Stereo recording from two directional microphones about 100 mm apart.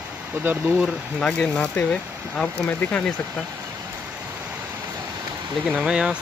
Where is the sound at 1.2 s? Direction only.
10° left (ahead or behind).